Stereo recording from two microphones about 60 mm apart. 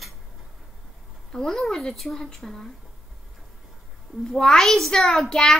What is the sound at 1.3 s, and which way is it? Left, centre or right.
A woman's voice, centre.